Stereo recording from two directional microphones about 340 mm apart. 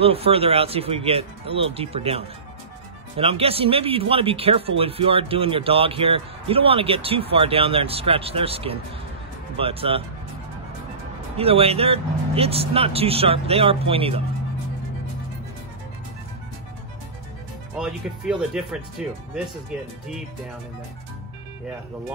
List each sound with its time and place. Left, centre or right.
0.0 s speech: centre
11.3 s speech: centre
17.7 s speech: centre